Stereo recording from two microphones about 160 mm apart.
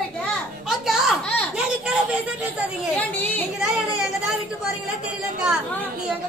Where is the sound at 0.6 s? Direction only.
Centre (ahead or behind).